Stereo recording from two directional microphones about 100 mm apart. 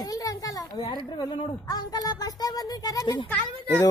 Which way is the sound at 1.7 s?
40° left (ahead or behind).